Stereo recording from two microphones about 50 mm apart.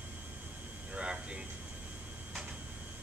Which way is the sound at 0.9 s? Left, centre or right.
Right.